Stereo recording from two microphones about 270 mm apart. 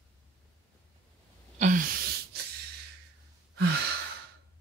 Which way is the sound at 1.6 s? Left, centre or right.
Right.